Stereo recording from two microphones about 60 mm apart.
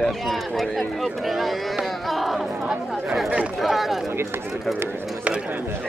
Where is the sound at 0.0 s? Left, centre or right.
Centre.